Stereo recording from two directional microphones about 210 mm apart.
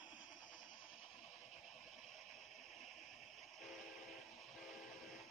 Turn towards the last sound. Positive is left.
turn(degrees=0)  # may be behind; listen again after turning